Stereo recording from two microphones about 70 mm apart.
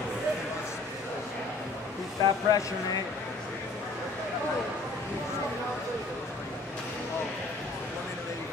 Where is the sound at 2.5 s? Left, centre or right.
Left.